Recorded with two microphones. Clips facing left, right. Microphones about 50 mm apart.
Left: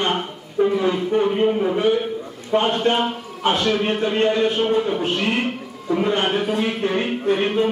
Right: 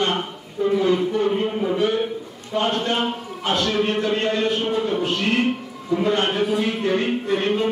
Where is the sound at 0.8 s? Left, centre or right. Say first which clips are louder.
Even; left.